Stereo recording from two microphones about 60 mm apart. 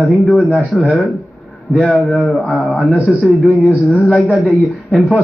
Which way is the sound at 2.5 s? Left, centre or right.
Left.